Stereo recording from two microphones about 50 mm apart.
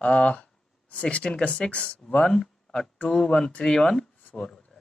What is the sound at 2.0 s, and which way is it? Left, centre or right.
Speech, centre.